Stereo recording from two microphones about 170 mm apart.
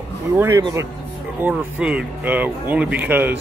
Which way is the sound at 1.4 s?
5° right (ahead or behind).